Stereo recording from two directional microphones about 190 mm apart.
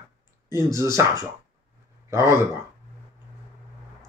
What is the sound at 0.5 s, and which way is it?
Speech, 15° right (ahead or behind).